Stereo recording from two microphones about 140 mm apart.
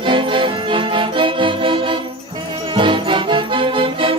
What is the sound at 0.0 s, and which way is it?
Music, 35° right (ahead or behind).